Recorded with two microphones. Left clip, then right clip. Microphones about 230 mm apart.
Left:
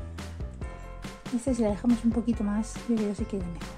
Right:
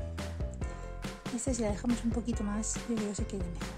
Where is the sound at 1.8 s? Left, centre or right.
Centre.